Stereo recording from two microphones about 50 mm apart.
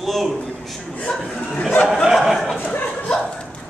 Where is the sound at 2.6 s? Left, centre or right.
Left.